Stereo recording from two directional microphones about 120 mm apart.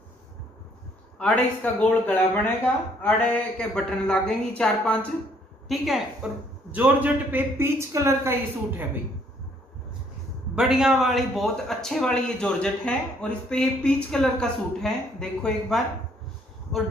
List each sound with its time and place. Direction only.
1.1 s a woman's voice: 5° left (ahead or behind); by 8.8 s 20° right (ahead or behind)
10.5 s a man's voice: 5° right (ahead or behind)